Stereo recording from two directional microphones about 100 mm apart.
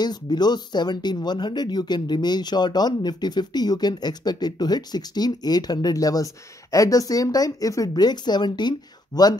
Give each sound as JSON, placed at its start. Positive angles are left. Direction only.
{"t": 0.0, "sound": "speech", "side_deg": 45}